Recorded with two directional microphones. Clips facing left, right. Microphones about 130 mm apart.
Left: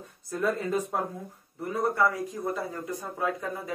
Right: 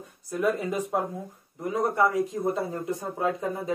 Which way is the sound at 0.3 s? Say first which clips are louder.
Right 1 dB; 15° right (ahead or behind).